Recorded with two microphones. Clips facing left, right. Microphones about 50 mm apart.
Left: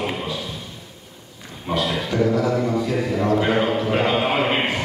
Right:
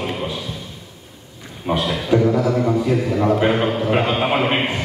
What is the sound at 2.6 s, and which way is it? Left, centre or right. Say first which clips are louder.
A man's voice: right 3 dB; centre.